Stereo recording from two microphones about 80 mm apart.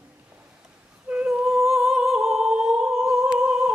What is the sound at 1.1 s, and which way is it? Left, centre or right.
Music, centre.